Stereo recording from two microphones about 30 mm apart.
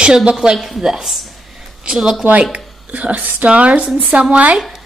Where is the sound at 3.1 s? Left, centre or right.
Right.